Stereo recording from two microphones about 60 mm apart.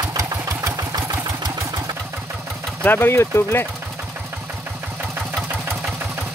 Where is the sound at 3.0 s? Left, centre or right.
Left.